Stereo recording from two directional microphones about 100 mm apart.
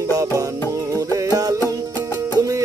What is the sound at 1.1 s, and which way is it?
Music, 35° right (ahead or behind).